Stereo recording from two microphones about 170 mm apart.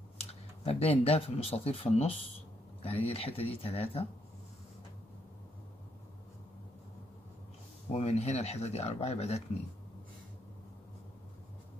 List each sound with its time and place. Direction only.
0.2 s speech: 35° left (ahead or behind)
7.9 s speech: 40° left (ahead or behind)